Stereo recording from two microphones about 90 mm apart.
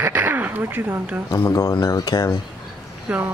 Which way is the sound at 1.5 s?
45° left (ahead or behind).